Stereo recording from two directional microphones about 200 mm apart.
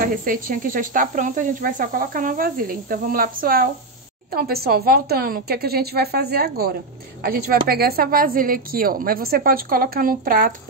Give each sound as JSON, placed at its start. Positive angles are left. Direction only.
{"t": 0.1, "sound": "speech", "side_deg": -45}